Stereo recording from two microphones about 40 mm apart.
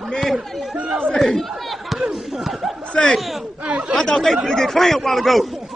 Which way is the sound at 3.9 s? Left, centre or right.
Centre.